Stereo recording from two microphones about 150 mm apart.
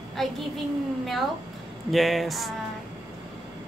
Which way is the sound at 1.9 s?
Centre (ahead or behind).